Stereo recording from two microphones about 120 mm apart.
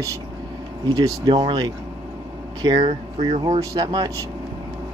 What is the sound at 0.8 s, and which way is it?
Speech, 30° right (ahead or behind).